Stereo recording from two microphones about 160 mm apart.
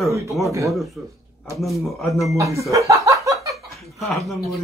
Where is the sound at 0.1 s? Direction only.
20° right (ahead or behind).